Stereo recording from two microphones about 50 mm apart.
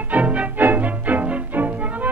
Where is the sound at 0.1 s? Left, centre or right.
Right.